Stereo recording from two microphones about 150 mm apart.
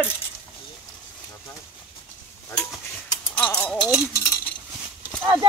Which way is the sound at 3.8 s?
20° left (ahead or behind).